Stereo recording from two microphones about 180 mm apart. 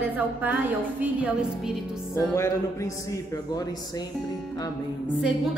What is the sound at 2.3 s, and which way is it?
Music, 15° left (ahead or behind).